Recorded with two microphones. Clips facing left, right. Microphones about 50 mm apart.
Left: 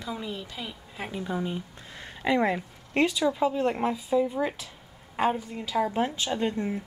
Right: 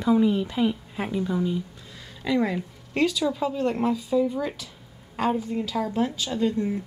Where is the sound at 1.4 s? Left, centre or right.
Left.